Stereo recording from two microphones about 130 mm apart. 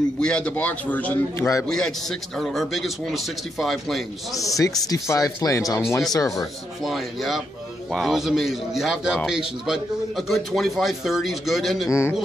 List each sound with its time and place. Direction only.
0.2 s a man's voice: 5° left (ahead or behind)
4.4 s speech: 25° left (ahead or behind)
6.8 s a man's voice: centre (ahead or behind)